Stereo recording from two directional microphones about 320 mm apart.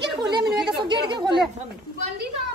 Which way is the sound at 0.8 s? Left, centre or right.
Centre.